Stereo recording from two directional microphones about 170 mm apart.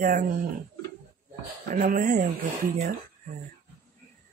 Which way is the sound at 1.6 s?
50° right (ahead or behind).